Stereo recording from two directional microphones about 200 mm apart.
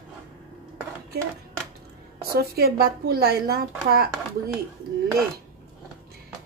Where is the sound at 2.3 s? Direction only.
50° right (ahead or behind).